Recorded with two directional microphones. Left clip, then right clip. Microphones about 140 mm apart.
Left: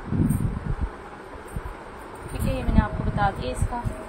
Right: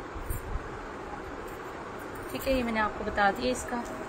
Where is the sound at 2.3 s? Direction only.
20° right (ahead or behind).